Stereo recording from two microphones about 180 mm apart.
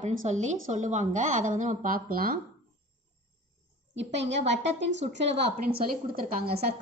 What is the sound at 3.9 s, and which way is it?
A woman's voice, 80° right.